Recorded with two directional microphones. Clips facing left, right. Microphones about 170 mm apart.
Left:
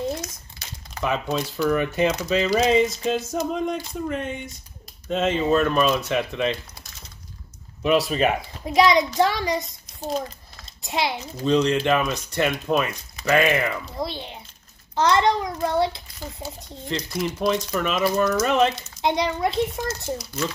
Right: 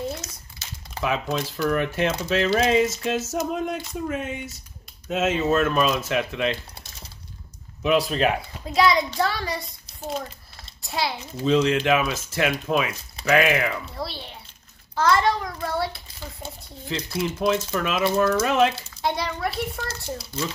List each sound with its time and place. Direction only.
1.0 s speech: centre (ahead or behind)
7.8 s speech: centre (ahead or behind)
8.6 s a child's voice: 20° left (ahead or behind)
10.8 s a child's voice: 20° left (ahead or behind)
11.4 s speech: 5° right (ahead or behind)
13.9 s a child's voice: 20° left (ahead or behind)
16.8 s speech: 5° right (ahead or behind)
18.9 s a child's voice: 20° left (ahead or behind)